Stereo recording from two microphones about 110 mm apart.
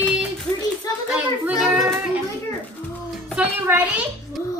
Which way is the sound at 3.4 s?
10° right (ahead or behind).